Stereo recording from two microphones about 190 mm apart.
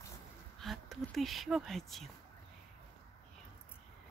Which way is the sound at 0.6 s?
Centre (ahead or behind).